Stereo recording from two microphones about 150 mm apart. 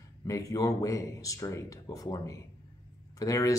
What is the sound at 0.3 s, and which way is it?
Speech, 20° left (ahead or behind).